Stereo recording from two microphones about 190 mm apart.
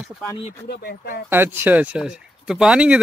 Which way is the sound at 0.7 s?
60° left (ahead or behind).